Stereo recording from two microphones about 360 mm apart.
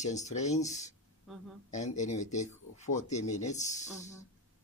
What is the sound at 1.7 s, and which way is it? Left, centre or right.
Speech, centre.